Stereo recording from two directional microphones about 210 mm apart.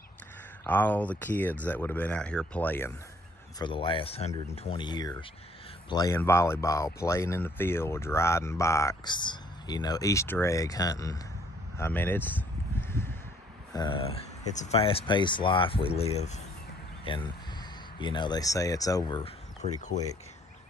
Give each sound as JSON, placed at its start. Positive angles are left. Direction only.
{"t": 0.7, "sound": "speech", "side_deg": 10}
{"t": 3.5, "sound": "speech", "side_deg": 20}
{"t": 11.8, "sound": "a sound", "side_deg": 10}
{"t": 13.7, "sound": "speech", "side_deg": 25}